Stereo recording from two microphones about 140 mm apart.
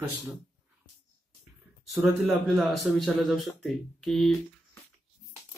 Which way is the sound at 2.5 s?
Centre (ahead or behind).